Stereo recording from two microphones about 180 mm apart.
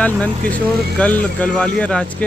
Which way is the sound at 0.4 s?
50° right (ahead or behind).